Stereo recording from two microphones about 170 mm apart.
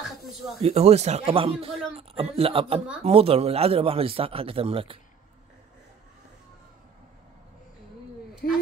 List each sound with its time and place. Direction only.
0.6 s speech: 40° right (ahead or behind)
8.4 s a woman's voice: 60° left (ahead or behind)